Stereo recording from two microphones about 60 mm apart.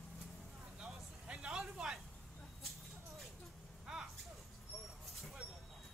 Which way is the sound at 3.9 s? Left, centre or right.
Centre.